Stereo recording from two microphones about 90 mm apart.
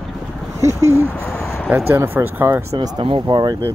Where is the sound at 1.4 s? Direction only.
5° left (ahead or behind).